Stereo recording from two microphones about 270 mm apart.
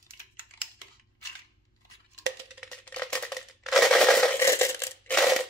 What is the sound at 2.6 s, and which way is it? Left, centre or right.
Crushing, centre.